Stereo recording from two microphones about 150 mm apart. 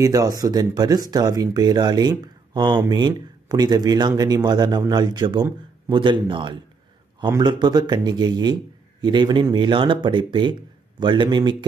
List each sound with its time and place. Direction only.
0.0 s a man's voice: 25° right (ahead or behind)